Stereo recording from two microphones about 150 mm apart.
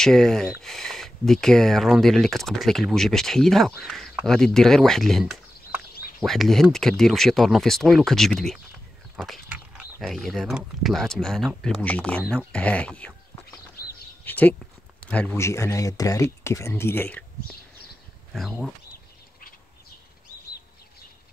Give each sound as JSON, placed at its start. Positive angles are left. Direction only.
{"t": 0.0, "sound": "speech", "side_deg": 5}
{"t": 13.8, "sound": "bird", "side_deg": 90}
{"t": 14.2, "sound": "a sound", "side_deg": 10}
{"t": 15.0, "sound": "speech", "side_deg": 10}
{"t": 18.3, "sound": "speech", "side_deg": 0}